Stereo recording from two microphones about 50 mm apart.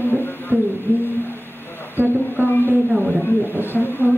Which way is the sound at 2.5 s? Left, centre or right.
Left.